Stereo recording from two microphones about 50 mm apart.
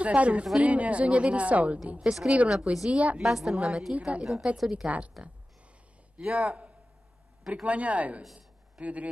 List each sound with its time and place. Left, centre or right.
0.0 s speech: right
2.0 s a woman's voice: centre
2.9 s a woman's voice: right
3.2 s a woman's voice: centre; by 5.1 s right
6.1 s speech: right
8.4 s a sound: right